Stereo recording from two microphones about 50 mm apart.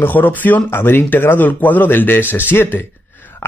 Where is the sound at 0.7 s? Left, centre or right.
Left.